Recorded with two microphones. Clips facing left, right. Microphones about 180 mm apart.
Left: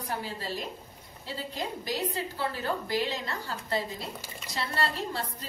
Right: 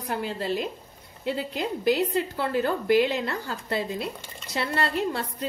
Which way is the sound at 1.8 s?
60° right (ahead or behind).